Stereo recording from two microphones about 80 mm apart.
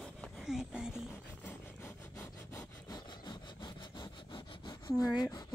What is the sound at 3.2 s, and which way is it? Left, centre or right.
Sawing, left.